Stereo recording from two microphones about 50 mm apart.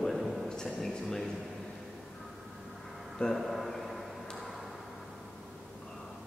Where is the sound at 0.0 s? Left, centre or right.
Centre.